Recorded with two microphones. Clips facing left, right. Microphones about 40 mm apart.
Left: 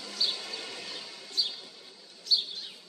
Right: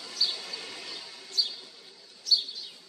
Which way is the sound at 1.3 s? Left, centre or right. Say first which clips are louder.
Right 1 dB; left.